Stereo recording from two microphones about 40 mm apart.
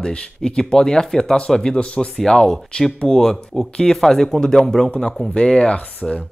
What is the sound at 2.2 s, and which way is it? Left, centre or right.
Speech, centre.